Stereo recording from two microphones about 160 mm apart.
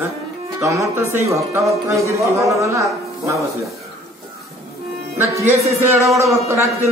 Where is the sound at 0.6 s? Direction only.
20° right (ahead or behind).